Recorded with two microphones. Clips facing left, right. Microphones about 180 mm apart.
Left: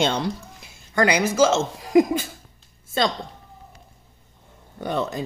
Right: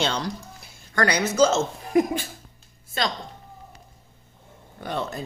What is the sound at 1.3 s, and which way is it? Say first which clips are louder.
Speech: left 1 dB; 90° left.